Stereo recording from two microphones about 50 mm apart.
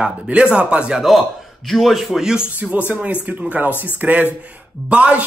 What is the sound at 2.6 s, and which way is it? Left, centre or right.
A man's voice, right.